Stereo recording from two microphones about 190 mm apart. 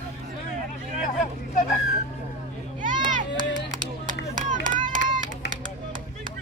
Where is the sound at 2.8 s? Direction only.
45° right (ahead or behind).